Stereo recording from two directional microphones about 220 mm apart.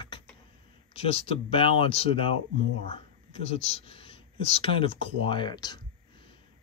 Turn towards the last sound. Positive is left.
turn(degrees=20)  # may be behind; listen again after turning